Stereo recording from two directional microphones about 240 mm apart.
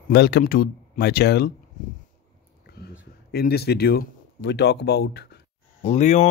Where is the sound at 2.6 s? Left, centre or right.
Left.